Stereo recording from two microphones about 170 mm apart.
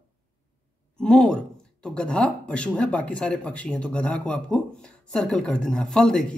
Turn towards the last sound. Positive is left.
turn(degrees=5)  # may be behind; listen again after turning